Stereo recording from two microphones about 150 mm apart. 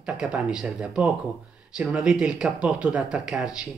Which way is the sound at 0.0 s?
5° right (ahead or behind).